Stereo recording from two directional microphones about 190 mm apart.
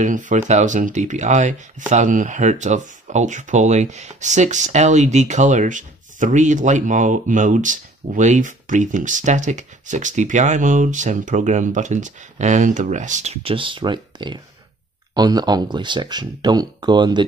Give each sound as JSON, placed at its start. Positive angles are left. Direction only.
{"t": 0.0, "sound": "speech", "side_deg": -40}